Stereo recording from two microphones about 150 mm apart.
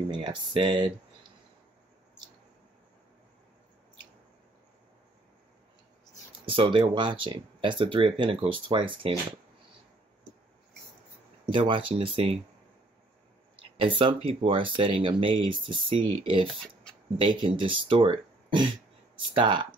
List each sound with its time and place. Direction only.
0.1 s speech: 30° right (ahead or behind)
6.4 s speech: 35° right (ahead or behind)
11.4 s speech: 35° right (ahead or behind)
13.7 s speech: 35° right (ahead or behind)
16.4 s speech: centre (ahead or behind)
17.2 s speech: 30° right (ahead or behind)